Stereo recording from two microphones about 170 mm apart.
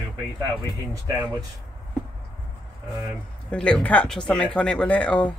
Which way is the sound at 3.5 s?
5° left (ahead or behind).